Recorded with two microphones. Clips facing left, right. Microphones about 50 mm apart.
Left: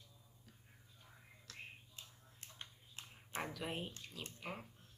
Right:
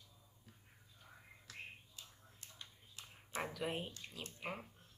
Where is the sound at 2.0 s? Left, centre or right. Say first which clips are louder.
Left 1 dB; left.